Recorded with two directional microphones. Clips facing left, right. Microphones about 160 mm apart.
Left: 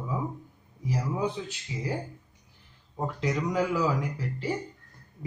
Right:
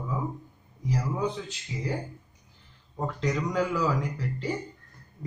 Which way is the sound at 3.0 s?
5° left (ahead or behind).